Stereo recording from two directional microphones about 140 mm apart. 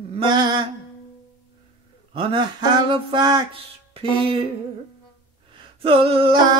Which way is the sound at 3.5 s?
40° right (ahead or behind).